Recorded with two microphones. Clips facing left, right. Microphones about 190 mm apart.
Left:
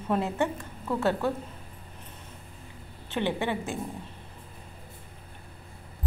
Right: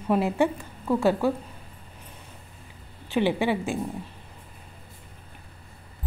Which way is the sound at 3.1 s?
10° right (ahead or behind).